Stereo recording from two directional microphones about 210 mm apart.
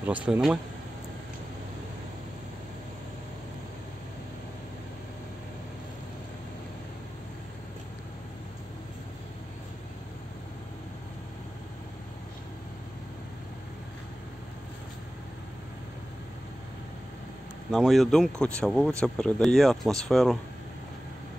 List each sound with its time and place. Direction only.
0.0 s speech: 5° right (ahead or behind)
17.6 s speech: centre (ahead or behind)